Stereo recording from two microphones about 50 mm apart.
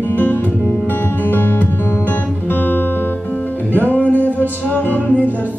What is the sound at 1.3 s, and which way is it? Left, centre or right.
Music, left.